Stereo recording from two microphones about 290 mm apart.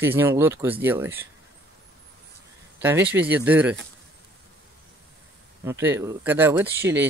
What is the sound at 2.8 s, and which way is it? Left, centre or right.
Speech, centre.